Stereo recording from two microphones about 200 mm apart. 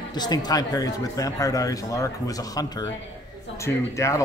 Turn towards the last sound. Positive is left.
turn(degrees=15)  # may be behind; listen again after turning